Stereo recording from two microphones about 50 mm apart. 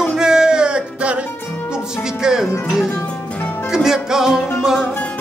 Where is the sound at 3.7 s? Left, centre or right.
Centre.